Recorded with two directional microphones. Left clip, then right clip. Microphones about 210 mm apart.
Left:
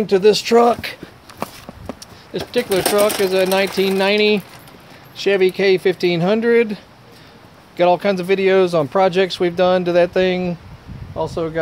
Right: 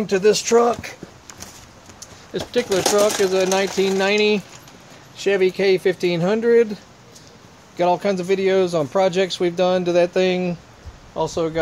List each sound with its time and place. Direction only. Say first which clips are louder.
0.0 s speech: left 3 dB; 15° left (ahead or behind)
0.6 s speech: left 4 dB; 25° left (ahead or behind)
2.3 s speech: left 2 dB; 10° left (ahead or behind)